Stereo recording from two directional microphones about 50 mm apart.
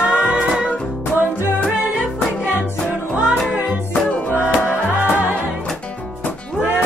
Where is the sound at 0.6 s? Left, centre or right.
Left.